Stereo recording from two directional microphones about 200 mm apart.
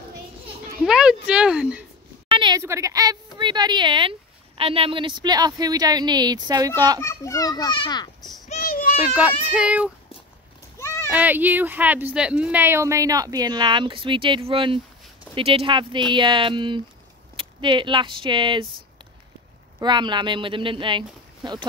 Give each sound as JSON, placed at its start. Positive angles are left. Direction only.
{"t": 0.8, "sound": "speech", "side_deg": -5}
{"t": 2.2, "sound": "a woman's voice", "side_deg": -25}
{"t": 7.0, "sound": "a child's voice", "side_deg": 15}
{"t": 8.2, "sound": "a sound", "side_deg": 0}
{"t": 8.5, "sound": "a sound", "side_deg": 40}
{"t": 9.5, "sound": "speech", "side_deg": -5}
{"t": 11.1, "sound": "speech", "side_deg": -10}
{"t": 19.8, "sound": "speech", "side_deg": -20}